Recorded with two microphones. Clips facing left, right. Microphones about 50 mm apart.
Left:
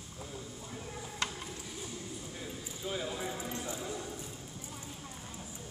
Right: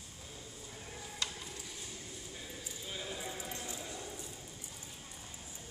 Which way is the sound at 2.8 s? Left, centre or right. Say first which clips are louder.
Left 7 dB; centre.